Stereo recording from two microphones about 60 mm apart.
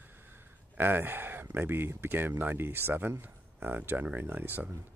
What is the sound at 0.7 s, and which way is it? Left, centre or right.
Speech, right.